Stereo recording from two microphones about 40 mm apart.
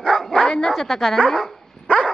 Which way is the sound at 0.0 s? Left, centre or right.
Centre.